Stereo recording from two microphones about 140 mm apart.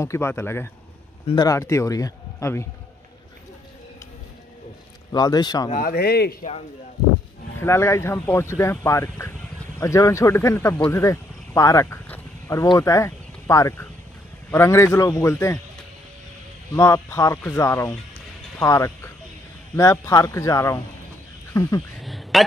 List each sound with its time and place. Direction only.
0.0 s speech: 20° left (ahead or behind)
1.2 s a man's voice: 30° left (ahead or behind)
5.1 s speech: 30° left (ahead or behind)
5.8 s speech: 90° left
6.4 s speech: 55° left (ahead or behind)
7.5 s speech: 20° left (ahead or behind)
16.7 s speech: 20° left (ahead or behind)
22.0 s a sound: centre (ahead or behind)